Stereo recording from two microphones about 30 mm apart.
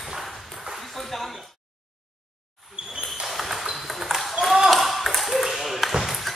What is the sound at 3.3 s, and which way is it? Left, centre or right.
Ping, centre.